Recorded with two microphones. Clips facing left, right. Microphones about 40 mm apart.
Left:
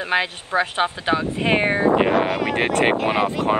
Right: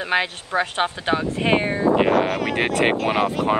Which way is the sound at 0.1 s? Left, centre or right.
Centre.